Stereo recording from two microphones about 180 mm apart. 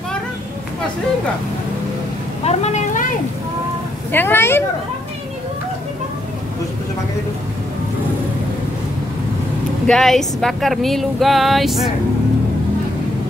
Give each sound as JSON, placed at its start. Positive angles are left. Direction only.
{"t": 2.4, "sound": "vehicle", "side_deg": 40}
{"t": 4.1, "sound": "speech", "side_deg": 10}
{"t": 9.8, "sound": "speech", "side_deg": 0}